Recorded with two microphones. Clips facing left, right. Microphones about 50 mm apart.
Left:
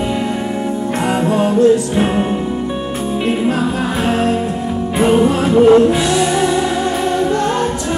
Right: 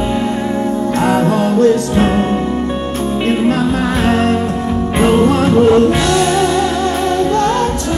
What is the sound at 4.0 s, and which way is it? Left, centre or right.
Music, right.